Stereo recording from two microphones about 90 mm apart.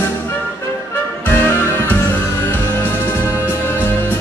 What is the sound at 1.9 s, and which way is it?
Music, 25° left (ahead or behind).